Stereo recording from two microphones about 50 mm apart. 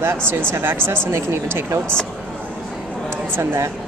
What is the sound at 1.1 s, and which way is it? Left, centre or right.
Speech, right.